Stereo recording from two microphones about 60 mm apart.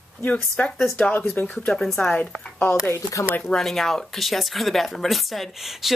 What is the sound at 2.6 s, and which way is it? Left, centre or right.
Speech, left.